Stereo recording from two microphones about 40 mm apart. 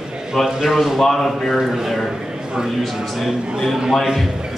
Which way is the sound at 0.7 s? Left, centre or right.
Centre.